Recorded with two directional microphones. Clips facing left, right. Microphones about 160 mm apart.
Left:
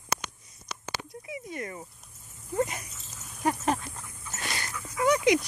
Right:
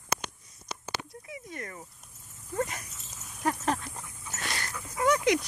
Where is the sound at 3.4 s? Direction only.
10° left (ahead or behind).